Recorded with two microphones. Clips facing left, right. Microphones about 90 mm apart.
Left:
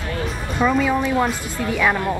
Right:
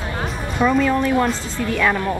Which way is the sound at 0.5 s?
Centre (ahead or behind).